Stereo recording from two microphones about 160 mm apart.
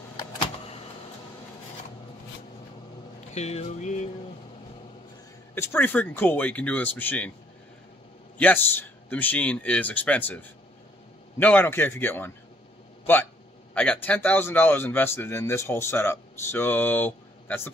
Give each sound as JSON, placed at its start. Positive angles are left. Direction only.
{"t": 0.4, "sound": "a sound", "side_deg": 40}
{"t": 3.3, "sound": "music", "side_deg": 45}
{"t": 5.5, "sound": "speech", "side_deg": 15}
{"t": 8.4, "sound": "speech", "side_deg": 10}